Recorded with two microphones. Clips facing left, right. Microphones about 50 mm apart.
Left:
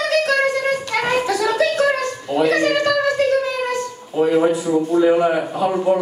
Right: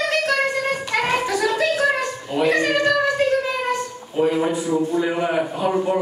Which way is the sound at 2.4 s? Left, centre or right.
Centre.